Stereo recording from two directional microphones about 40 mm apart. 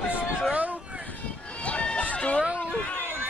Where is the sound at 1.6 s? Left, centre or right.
Left.